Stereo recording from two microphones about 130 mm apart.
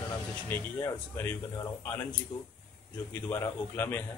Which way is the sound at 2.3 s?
45° left (ahead or behind).